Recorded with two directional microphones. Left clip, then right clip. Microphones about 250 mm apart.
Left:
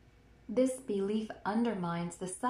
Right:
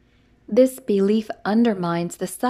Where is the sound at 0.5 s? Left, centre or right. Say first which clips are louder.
Right 14 dB; right.